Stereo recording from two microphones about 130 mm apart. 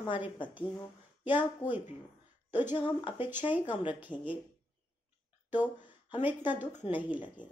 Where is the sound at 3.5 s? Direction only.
15° right (ahead or behind).